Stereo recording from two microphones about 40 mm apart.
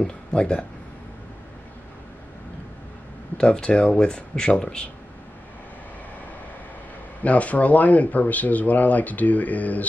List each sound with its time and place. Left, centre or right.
0.0 s speech: left
3.3 s speech: left
7.2 s speech: left